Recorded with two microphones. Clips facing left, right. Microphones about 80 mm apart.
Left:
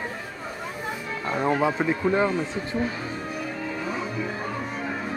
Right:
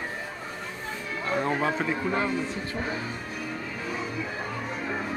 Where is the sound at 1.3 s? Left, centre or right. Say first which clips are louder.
Left 3 dB; centre.